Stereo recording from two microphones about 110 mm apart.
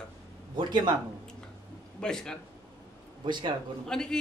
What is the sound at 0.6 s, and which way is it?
Speech, 45° right (ahead or behind).